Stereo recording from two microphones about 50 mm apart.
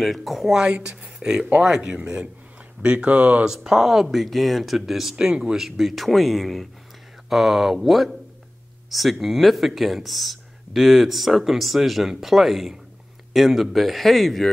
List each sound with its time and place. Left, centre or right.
0.0 s speech: centre
0.6 s speech: centre
3.4 s speech: centre